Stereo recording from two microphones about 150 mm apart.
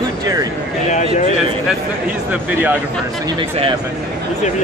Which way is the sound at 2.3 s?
10° right (ahead or behind).